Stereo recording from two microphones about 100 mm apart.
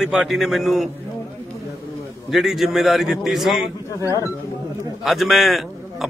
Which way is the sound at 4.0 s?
35° left (ahead or behind).